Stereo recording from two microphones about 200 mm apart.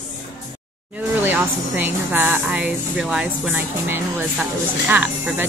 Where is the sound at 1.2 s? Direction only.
10° right (ahead or behind).